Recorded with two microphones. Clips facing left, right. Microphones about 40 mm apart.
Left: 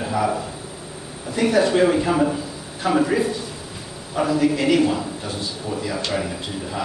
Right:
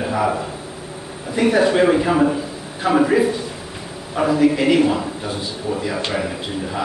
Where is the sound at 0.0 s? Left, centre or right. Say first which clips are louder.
Right 2 dB; centre.